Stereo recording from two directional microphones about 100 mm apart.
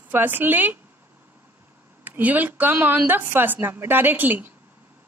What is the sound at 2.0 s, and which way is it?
A woman's voice, 15° right (ahead or behind).